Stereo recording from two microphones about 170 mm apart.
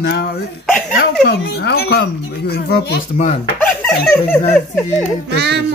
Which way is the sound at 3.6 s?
5° left (ahead or behind).